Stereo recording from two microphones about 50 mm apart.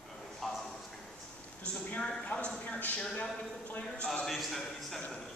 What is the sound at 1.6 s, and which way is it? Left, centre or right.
A woman's voice, left.